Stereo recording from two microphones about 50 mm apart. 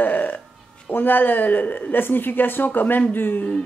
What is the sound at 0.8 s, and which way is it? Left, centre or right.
Speech, left.